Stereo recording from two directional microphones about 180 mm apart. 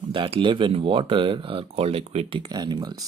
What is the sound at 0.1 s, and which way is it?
Speech, 30° right (ahead or behind).